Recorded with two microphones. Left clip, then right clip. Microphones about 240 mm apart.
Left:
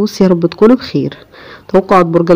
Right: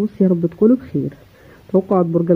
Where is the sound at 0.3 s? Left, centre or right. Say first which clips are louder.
Left 7 dB; left.